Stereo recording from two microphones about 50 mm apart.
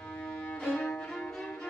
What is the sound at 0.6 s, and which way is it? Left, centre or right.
Music, centre.